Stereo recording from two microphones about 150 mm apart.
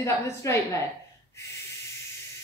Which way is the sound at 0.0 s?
20° left (ahead or behind).